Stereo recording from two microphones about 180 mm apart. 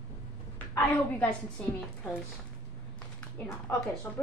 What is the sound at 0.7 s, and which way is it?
Speech, 10° left (ahead or behind).